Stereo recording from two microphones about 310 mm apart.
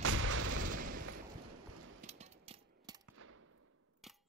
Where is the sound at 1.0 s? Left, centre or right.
Right.